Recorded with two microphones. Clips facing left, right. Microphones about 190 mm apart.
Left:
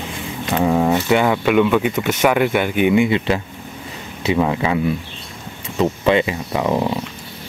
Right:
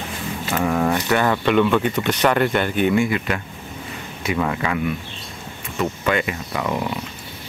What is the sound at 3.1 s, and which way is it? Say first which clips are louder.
Speech: left 5 dB; 25° left (ahead or behind).